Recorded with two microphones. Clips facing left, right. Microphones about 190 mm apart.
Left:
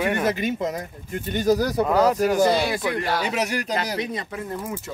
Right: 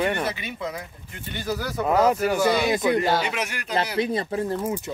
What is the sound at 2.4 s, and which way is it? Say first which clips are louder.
Speech: left 2 dB; 40° left (ahead or behind).